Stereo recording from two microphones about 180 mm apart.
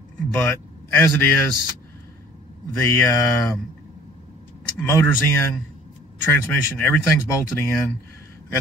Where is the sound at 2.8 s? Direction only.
15° left (ahead or behind).